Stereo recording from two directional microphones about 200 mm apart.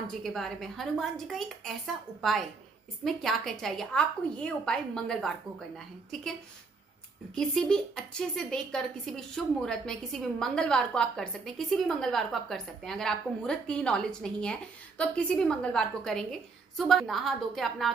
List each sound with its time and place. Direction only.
0.2 s a woman's voice: centre (ahead or behind)
3.0 s a woman's voice: centre (ahead or behind)
7.3 s a woman's voice: 5° left (ahead or behind)